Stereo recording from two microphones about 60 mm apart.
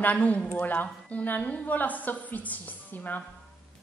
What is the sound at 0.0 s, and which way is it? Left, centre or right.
A woman's voice, left.